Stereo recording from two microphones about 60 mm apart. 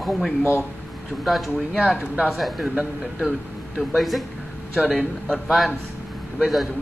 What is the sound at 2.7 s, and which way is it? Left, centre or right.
Speech, right.